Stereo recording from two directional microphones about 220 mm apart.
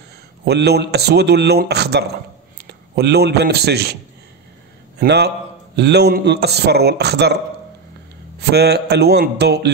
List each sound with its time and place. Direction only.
0.5 s a man's voice: 50° right (ahead or behind)